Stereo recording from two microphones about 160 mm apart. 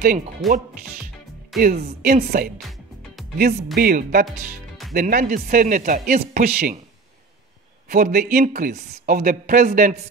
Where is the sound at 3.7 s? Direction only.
70° right (ahead or behind).